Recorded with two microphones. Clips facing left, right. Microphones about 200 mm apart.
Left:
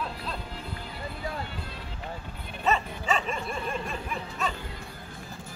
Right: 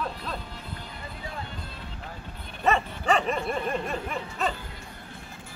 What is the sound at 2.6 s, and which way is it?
Bow-wow, 60° right (ahead or behind).